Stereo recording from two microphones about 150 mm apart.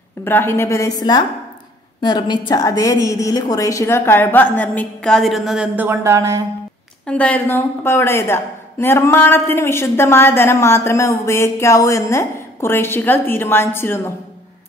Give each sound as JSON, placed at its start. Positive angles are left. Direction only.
{"t": 0.2, "sound": "a woman's voice", "side_deg": 15}
{"t": 7.1, "sound": "a woman's voice", "side_deg": 10}